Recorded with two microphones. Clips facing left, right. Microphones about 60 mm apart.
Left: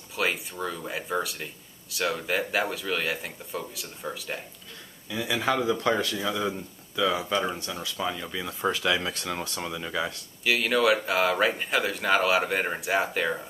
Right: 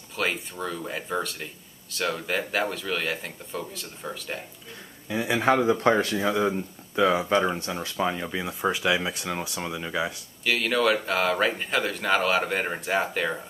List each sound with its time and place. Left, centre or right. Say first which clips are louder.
0.1 s speech: even; centre
5.0 s speech: right 4 dB; right
8.5 s speech: right 1 dB; centre
10.4 s speech: even; centre